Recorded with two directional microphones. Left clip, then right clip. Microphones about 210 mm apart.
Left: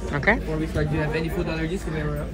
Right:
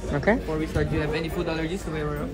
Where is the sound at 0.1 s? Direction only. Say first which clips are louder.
Left 2 dB; 15° right (ahead or behind).